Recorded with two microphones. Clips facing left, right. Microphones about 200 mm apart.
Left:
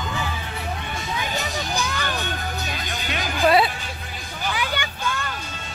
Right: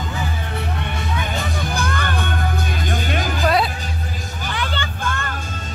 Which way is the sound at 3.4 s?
Centre (ahead or behind).